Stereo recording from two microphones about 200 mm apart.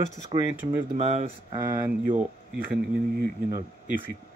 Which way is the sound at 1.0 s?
35° right (ahead or behind).